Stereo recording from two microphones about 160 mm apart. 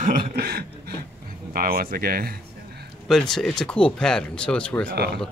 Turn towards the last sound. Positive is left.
turn(degrees=-90)